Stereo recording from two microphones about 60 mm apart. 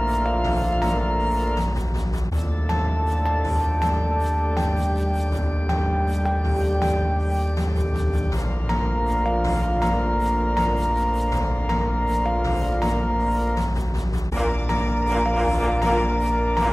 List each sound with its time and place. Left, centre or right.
0.6 s music: centre
3.3 s music: centre
6.2 s music: centre
9.0 s music: centre
9.8 s music: left
10.8 s music: centre
11.3 s music: left
15.0 s music: centre